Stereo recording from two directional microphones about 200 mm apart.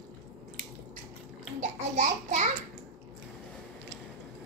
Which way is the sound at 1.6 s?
35° right (ahead or behind).